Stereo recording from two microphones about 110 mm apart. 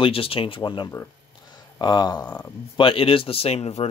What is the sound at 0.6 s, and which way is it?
Speech, 40° left (ahead or behind).